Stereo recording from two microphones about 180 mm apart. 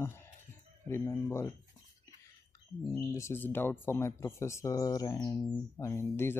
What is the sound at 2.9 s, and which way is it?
Speech, 15° left (ahead or behind).